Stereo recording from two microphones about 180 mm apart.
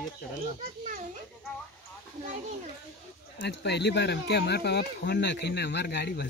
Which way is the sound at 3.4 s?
70° left (ahead or behind).